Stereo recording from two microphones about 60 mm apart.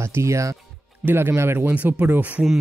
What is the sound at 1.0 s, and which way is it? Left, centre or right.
Speech, right.